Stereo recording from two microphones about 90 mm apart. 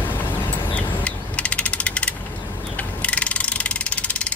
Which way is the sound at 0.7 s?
15° left (ahead or behind).